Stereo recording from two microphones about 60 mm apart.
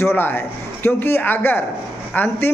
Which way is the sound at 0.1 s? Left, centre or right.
Left.